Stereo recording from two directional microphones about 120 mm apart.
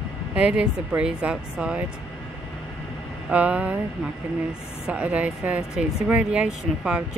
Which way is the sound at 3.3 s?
10° right (ahead or behind).